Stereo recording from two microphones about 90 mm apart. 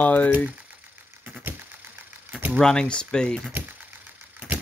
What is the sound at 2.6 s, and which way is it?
Speech, 10° left (ahead or behind).